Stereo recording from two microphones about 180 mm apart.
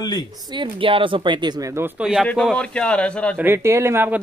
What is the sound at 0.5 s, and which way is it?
Speech, 30° right (ahead or behind).